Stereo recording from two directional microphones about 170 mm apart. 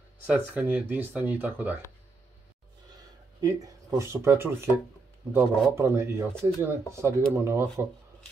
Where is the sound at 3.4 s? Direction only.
20° right (ahead or behind).